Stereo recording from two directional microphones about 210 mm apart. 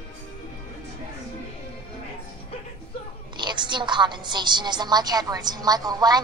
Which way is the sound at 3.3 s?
20° right (ahead or behind).